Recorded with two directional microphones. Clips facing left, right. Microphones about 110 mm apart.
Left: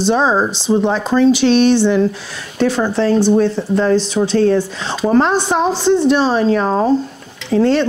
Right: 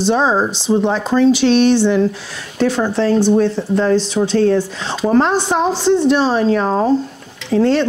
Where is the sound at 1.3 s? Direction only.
15° left (ahead or behind).